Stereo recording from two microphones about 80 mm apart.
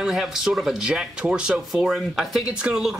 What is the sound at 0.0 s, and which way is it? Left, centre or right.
Speech, centre.